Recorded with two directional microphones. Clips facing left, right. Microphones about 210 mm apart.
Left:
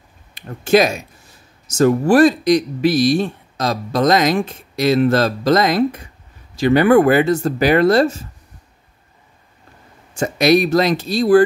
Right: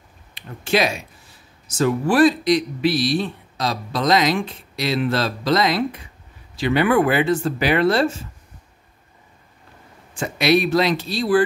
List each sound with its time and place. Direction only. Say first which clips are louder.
0.3 s speech: left 7 dB; 45° left (ahead or behind)
10.1 s speech: left 4 dB; 45° left (ahead or behind)